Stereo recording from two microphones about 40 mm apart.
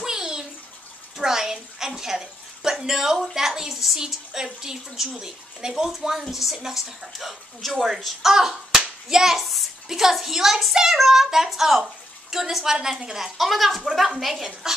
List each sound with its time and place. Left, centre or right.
0.0 s bathtub: centre
1.1 s a woman's voice: centre
4.1 s a woman's voice: centre
13.4 s speech: centre